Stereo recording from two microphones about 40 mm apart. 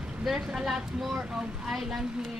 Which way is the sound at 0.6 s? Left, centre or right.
Centre.